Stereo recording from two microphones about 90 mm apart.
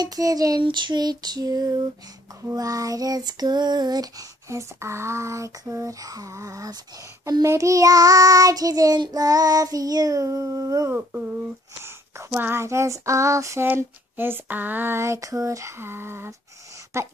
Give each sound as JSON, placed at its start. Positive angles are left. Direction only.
{"t": 0.0, "sound": "child singing", "side_deg": -40}
{"t": 0.7, "sound": "child singing", "side_deg": -60}
{"t": 13.7, "sound": "a sound", "side_deg": -25}
{"t": 16.9, "sound": "child singing", "side_deg": -30}